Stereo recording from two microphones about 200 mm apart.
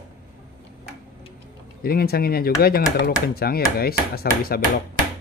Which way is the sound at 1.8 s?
50° left (ahead or behind).